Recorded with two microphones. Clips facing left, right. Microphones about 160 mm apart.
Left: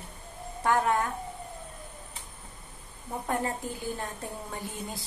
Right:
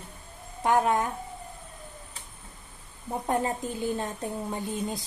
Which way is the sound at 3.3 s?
20° right (ahead or behind).